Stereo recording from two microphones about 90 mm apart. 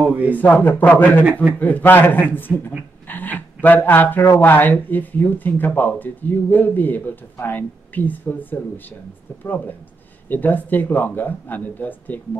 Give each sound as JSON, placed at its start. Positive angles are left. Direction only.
{"t": 0.0, "sound": "speech", "side_deg": -15}
{"t": 0.3, "sound": "speech", "side_deg": 20}
{"t": 3.1, "sound": "a sound", "side_deg": 20}
{"t": 4.4, "sound": "speech", "side_deg": 20}